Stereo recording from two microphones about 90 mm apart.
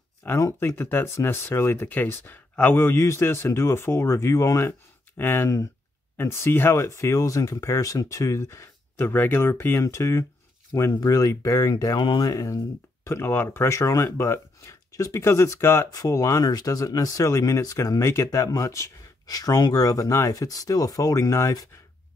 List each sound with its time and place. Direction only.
0.4 s speech: 35° left (ahead or behind)
12.0 s speech: 60° left (ahead or behind)
12.3 s speech: 40° left (ahead or behind)
13.0 s speech: 25° left (ahead or behind)